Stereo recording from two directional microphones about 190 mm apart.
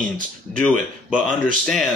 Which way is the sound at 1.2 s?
5° left (ahead or behind).